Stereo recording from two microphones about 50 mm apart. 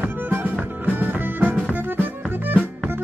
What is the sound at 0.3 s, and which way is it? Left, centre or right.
Music, right.